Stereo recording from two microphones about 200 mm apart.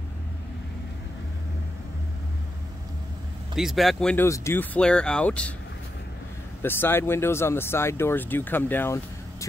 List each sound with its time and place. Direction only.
3.5 s speech: centre (ahead or behind)
6.6 s speech: 10° left (ahead or behind)